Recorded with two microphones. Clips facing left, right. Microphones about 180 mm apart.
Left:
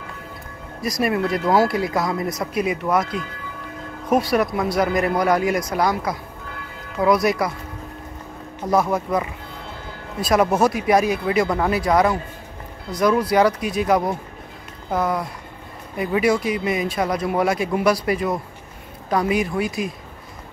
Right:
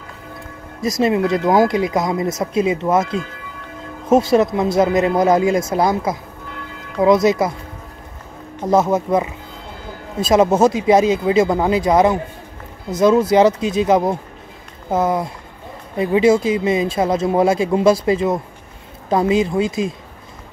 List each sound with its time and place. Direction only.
0.7 s speech: 20° right (ahead or behind)
8.5 s speech: 25° right (ahead or behind)